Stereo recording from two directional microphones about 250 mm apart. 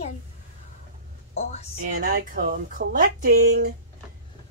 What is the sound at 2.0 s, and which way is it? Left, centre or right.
Speech, right.